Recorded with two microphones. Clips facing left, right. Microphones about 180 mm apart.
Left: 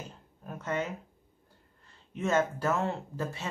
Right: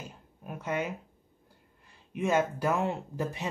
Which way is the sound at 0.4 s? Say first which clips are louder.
Right 1 dB; 10° right (ahead or behind).